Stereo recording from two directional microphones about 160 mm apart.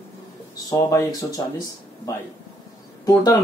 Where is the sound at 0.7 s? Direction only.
20° left (ahead or behind).